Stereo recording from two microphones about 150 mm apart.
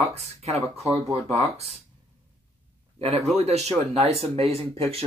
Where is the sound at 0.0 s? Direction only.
45° right (ahead or behind).